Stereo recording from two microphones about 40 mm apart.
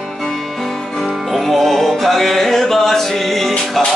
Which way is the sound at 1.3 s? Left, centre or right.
Centre.